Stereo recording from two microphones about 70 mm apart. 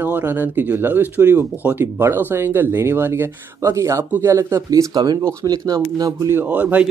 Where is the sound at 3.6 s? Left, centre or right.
Right.